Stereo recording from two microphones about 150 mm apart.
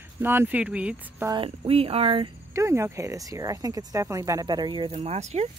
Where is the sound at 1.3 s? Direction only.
40° right (ahead or behind).